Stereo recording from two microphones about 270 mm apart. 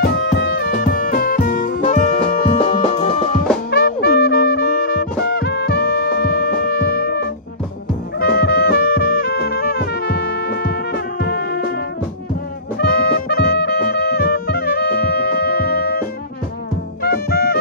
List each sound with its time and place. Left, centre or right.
0.0 s music: left
8.2 s brass instrument: left
12.7 s music: left